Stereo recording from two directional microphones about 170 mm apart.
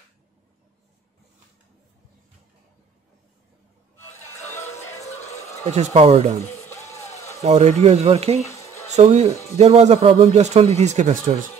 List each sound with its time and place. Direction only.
5.1 s a sound: 40° left (ahead or behind)
5.9 s a man's voice: 40° right (ahead or behind)
6.7 s music: 40° left (ahead or behind)
7.4 s a man's voice: 40° right (ahead or behind)
8.5 s music: 20° left (ahead or behind)
8.9 s a man's voice: 40° right (ahead or behind)